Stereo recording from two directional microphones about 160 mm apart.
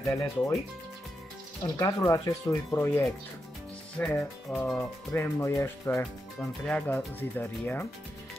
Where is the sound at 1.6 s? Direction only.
20° left (ahead or behind).